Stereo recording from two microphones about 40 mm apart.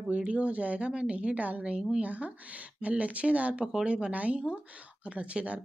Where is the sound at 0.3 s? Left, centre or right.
Right.